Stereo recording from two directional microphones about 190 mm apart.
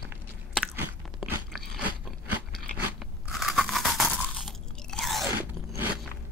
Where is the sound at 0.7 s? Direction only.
10° right (ahead or behind).